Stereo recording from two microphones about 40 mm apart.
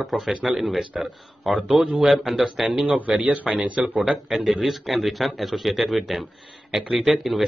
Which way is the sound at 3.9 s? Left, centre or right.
Centre.